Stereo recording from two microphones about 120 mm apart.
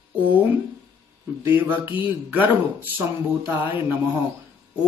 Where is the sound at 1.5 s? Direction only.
20° right (ahead or behind).